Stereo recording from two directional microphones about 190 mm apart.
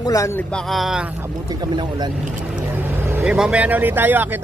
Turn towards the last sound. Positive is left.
turn(degrees=-10)  # may be behind; listen again after turning